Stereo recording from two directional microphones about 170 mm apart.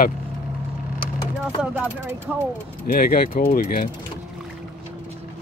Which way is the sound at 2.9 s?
60° left (ahead or behind).